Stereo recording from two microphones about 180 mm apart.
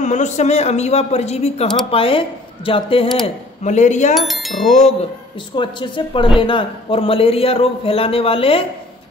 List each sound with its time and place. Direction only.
0.0 s a man's voice: 40° left (ahead or behind)
3.6 s a man's voice: 40° left (ahead or behind)
4.1 s chime: centre (ahead or behind)
4.6 s a man's voice: 40° left (ahead or behind)
5.6 s a man's voice: 25° left (ahead or behind)